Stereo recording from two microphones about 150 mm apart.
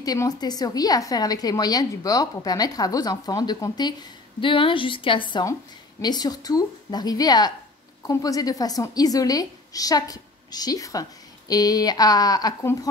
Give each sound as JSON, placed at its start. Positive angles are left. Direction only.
{"t": 0.0, "sound": "a woman's voice", "side_deg": 25}